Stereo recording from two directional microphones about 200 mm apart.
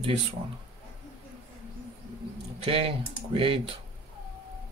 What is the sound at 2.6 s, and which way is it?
Speech, 25° right (ahead or behind).